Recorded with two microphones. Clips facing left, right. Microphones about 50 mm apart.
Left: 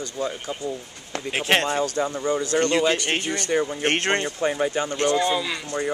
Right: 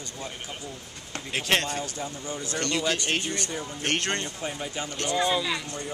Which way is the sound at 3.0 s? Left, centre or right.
Left.